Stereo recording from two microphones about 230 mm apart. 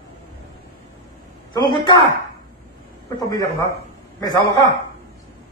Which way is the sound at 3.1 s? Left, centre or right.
Centre.